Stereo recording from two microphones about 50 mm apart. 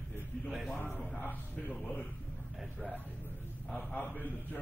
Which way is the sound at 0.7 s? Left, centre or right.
Left.